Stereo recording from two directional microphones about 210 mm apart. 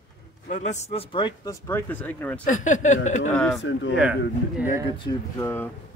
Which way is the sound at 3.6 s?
60° left (ahead or behind).